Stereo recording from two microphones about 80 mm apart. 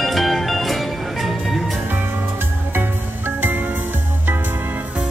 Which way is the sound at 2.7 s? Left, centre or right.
Right.